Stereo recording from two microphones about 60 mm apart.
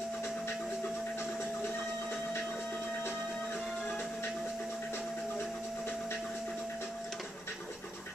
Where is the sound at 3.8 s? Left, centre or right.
Left.